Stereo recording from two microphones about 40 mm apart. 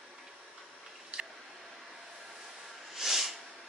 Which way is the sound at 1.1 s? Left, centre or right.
Right.